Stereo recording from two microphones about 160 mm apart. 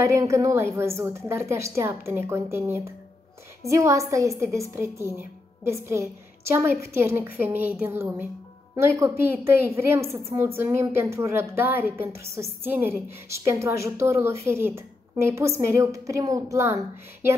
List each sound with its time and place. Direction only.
0.0 s a woman's voice: 20° right (ahead or behind)